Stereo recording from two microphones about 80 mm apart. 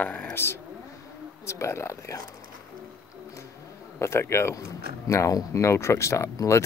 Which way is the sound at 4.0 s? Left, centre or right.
Left.